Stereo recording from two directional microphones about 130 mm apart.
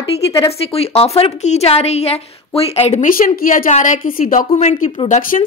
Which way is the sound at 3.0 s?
90° left.